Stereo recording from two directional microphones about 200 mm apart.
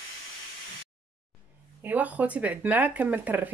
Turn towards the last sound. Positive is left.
turn(degrees=-10)  # may be behind; listen again after turning